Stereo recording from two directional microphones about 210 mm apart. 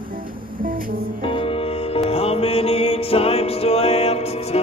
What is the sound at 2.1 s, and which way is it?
Music, 25° left (ahead or behind).